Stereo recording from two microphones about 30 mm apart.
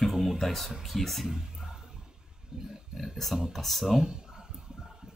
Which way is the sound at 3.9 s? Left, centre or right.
Right.